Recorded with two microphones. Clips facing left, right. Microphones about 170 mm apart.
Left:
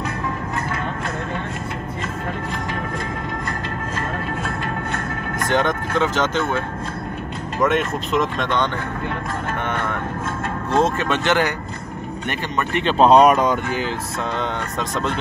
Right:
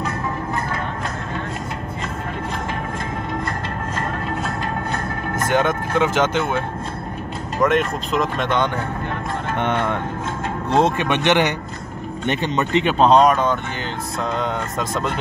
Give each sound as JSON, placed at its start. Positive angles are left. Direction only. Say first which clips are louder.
{"t": 5.5, "sound": "speech", "louder": "right 1 dB", "side_deg": -10}
{"t": 7.6, "sound": "speech", "louder": "right 1 dB", "side_deg": 0}
{"t": 9.6, "sound": "speech", "louder": "right 6 dB", "side_deg": -20}
{"t": 12.9, "sound": "speech", "louder": "left 2 dB", "side_deg": 5}
{"t": 14.3, "sound": "speech", "louder": "right 2 dB", "side_deg": 0}